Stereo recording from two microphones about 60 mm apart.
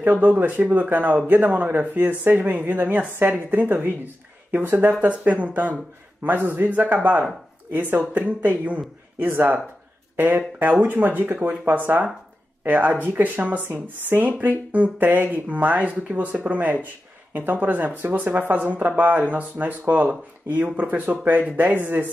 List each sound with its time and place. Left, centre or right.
0.0 s a man's voice: right